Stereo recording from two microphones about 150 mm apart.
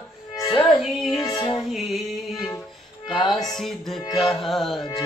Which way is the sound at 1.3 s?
30° left (ahead or behind).